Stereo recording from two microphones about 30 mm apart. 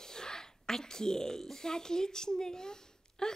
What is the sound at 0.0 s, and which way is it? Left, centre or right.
A woman's voice, left.